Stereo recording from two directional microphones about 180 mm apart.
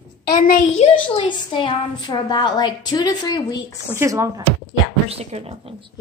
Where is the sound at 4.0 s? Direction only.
15° right (ahead or behind).